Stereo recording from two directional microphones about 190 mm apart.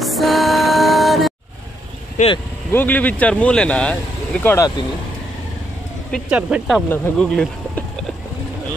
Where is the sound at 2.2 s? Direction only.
40° left (ahead or behind).